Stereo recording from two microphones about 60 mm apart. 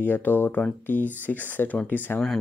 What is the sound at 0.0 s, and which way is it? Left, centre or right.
Speech, left.